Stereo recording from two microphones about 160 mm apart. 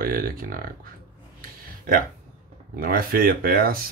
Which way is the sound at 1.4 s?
60° right (ahead or behind).